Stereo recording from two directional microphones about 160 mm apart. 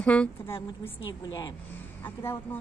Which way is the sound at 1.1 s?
25° left (ahead or behind).